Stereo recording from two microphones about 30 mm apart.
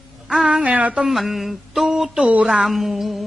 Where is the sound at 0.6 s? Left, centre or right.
Right.